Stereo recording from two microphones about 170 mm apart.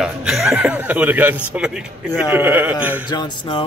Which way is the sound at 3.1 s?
30° left (ahead or behind).